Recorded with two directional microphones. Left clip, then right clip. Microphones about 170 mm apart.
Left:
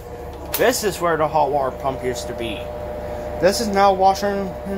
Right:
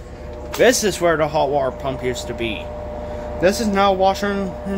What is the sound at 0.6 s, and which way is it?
Speech, 40° right (ahead or behind).